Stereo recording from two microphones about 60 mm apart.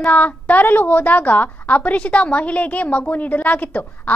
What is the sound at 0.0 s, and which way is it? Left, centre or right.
A woman's voice, left.